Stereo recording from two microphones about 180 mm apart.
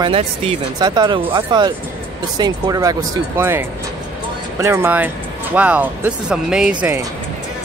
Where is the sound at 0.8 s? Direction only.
25° right (ahead or behind); by 6.7 s 5° right (ahead or behind).